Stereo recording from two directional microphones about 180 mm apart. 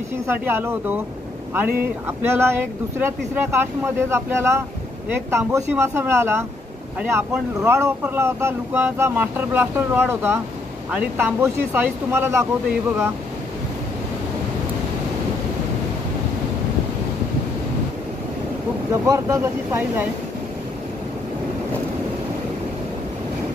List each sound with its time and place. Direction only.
0.5 s speech: 10° right (ahead or behind)
18.9 s speech: 15° right (ahead or behind)